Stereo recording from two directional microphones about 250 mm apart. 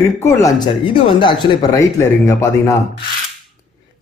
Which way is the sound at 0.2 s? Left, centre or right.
Centre.